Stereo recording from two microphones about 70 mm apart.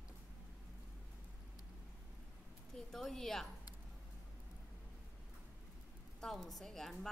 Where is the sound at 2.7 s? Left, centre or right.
Centre.